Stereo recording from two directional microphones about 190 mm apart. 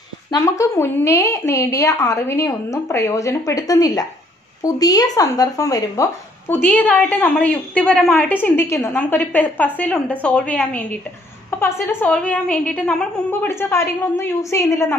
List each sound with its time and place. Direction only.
0.3 s speech: 15° left (ahead or behind)